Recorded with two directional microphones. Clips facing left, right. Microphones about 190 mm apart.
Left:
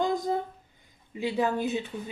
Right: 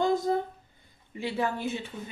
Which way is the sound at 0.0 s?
15° left (ahead or behind).